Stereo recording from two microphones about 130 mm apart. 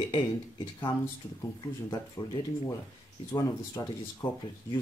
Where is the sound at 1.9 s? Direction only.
35° left (ahead or behind).